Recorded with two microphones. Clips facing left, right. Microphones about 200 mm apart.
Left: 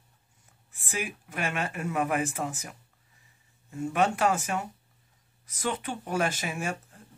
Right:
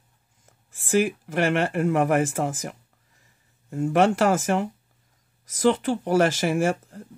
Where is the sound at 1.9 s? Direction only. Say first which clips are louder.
Right 5 dB; 80° right.